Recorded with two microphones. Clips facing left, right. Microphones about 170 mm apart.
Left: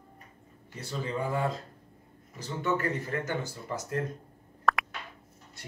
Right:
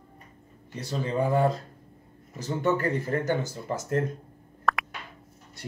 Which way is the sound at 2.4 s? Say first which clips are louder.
Right 4 dB; 40° right (ahead or behind).